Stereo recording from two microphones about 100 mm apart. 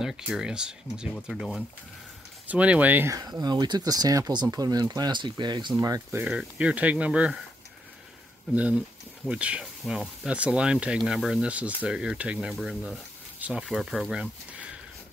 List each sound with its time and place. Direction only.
0.0 s speech: 5° right (ahead or behind)
3.1 s speech: 40° right (ahead or behind)
5.8 s speech: 35° right (ahead or behind)
6.1 s speech: 15° right (ahead or behind)
8.5 s speech: 10° right (ahead or behind)